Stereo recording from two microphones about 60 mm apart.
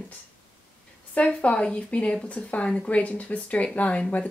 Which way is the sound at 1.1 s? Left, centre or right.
Left.